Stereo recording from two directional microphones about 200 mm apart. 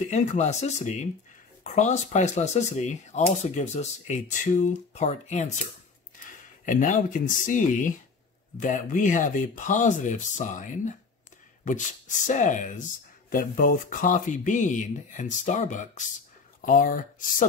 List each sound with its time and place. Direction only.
0.1 s speech: 35° left (ahead or behind)
6.6 s speech: 40° left (ahead or behind)
12.3 s speech: 40° left (ahead or behind)